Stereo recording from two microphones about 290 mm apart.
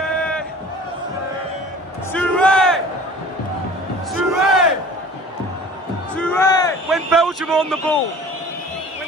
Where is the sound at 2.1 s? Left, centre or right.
Centre.